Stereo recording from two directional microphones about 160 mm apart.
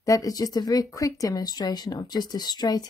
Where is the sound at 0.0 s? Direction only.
20° left (ahead or behind).